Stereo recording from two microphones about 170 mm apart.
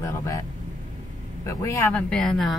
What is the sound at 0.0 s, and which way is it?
Speech, 15° left (ahead or behind).